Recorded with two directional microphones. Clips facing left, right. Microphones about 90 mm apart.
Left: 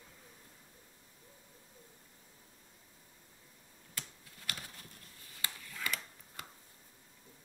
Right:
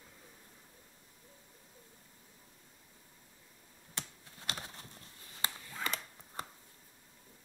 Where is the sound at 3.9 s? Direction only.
25° right (ahead or behind).